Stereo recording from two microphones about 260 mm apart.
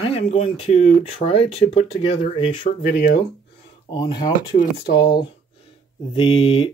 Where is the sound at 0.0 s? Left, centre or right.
Left.